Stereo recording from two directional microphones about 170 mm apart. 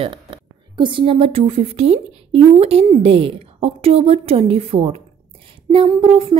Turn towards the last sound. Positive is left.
turn(degrees=-30)  # may be behind; listen again after turning